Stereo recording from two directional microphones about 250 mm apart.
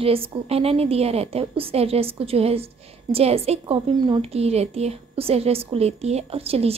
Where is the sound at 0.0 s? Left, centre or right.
Right.